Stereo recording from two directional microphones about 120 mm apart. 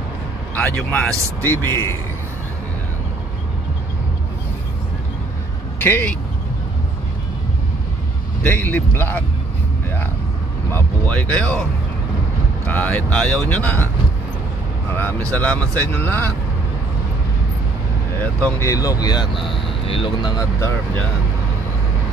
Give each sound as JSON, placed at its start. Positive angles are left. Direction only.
{"t": 0.6, "sound": "speech", "side_deg": 5}
{"t": 1.6, "sound": "speech", "side_deg": 20}
{"t": 5.8, "sound": "speech", "side_deg": 15}
{"t": 8.4, "sound": "speech", "side_deg": 15}
{"t": 10.7, "sound": "speech", "side_deg": 10}
{"t": 12.6, "sound": "speech", "side_deg": 15}
{"t": 15.0, "sound": "speech", "side_deg": 15}
{"t": 18.2, "sound": "speech", "side_deg": 15}
{"t": 18.7, "sound": "speech", "side_deg": 30}
{"t": 19.3, "sound": "speech", "side_deg": 0}
{"t": 19.9, "sound": "speech", "side_deg": 45}